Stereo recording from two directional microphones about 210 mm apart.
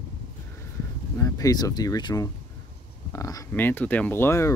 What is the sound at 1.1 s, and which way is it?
Speech, 15° left (ahead or behind).